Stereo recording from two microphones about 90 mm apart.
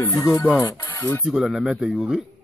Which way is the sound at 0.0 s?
35° left (ahead or behind).